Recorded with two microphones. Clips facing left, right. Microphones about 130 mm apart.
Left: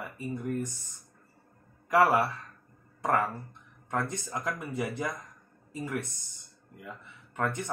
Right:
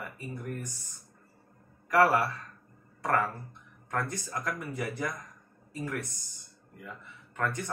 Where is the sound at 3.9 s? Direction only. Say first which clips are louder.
Left 1 dB; 20° left (ahead or behind).